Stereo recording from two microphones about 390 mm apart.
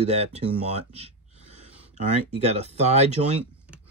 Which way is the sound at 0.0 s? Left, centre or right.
Centre.